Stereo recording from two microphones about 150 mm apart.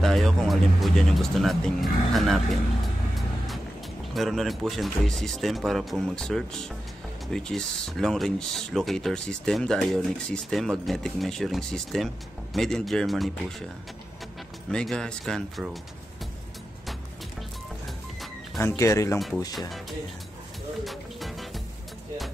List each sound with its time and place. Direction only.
0.0 s speech: 5° left (ahead or behind)
4.1 s speech: centre (ahead or behind)
14.7 s speech: 5° left (ahead or behind)
18.8 s speech: 20° left (ahead or behind)
19.1 s speech: centre (ahead or behind)
20.8 s music: centre (ahead or behind)